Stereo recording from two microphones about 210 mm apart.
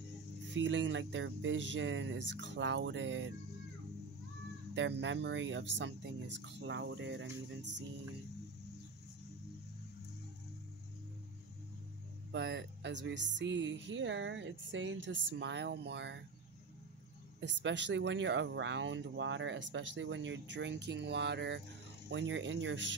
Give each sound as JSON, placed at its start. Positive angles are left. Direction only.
{"t": 0.5, "sound": "speech", "side_deg": -60}
{"t": 4.7, "sound": "speech", "side_deg": -60}
{"t": 12.3, "sound": "speech", "side_deg": -55}
{"t": 17.4, "sound": "speech", "side_deg": -55}